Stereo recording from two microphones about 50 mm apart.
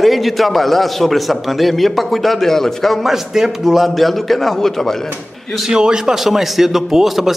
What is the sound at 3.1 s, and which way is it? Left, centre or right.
A man's voice, centre.